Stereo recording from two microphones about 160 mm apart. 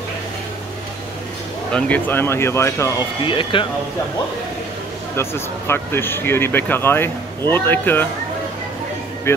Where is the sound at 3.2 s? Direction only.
30° left (ahead or behind).